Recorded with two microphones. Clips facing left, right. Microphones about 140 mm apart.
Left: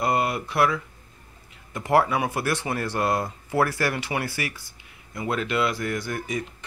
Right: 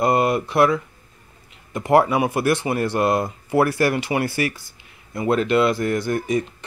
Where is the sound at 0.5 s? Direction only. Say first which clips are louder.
Right 5 dB; 25° right (ahead or behind).